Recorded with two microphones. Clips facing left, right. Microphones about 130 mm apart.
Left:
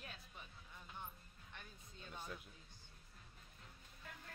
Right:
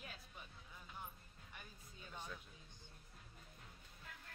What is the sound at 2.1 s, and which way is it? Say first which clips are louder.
Music: left 1 dB; 10° left (ahead or behind).